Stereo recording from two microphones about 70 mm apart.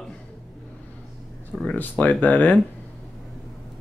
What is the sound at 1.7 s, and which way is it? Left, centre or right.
Speech, left.